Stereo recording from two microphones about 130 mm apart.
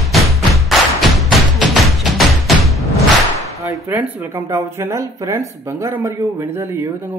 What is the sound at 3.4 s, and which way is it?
Slam, 25° right (ahead or behind).